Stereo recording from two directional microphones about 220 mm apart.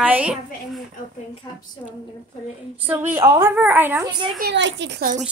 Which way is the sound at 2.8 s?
10° right (ahead or behind).